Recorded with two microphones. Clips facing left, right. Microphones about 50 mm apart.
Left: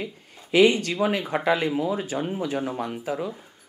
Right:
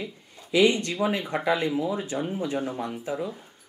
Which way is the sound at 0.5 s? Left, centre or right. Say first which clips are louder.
Left 3 dB; centre.